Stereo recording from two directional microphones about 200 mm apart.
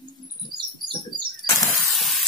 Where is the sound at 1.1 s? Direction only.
20° left (ahead or behind).